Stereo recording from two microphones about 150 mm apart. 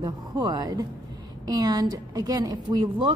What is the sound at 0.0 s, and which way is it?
A woman's voice, 25° right (ahead or behind).